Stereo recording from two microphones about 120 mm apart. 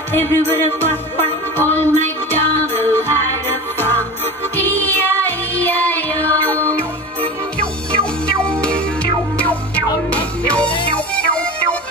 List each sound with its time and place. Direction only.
0.1 s music: 15° left (ahead or behind)
4.6 s music: 15° left (ahead or behind)
7.9 s music: 10° left (ahead or behind)